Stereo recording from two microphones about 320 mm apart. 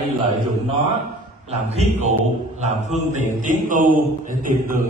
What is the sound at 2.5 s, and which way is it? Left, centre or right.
A man's voice, right.